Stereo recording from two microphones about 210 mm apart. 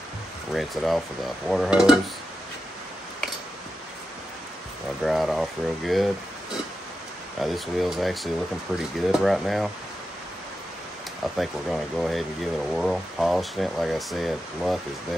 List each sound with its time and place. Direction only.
0.5 s speech: centre (ahead or behind)
5.0 s speech: centre (ahead or behind)
7.3 s speech: centre (ahead or behind)
11.3 s speech: centre (ahead or behind)